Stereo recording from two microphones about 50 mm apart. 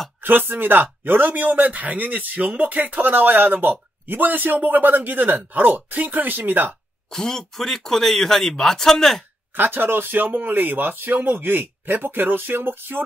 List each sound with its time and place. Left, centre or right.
0.2 s speech: right
7.1 s speech: centre
9.6 s speech: right